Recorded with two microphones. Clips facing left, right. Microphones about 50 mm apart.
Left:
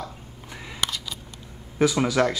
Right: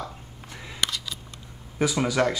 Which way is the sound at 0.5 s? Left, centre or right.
Centre.